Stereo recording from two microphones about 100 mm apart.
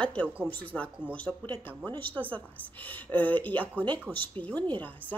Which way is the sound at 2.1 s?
15° left (ahead or behind).